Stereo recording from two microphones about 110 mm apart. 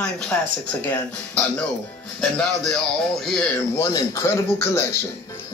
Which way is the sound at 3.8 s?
30° left (ahead or behind).